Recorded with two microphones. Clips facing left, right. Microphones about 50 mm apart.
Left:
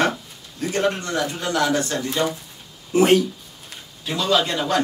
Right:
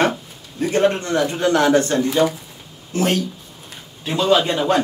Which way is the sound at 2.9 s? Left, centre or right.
Centre.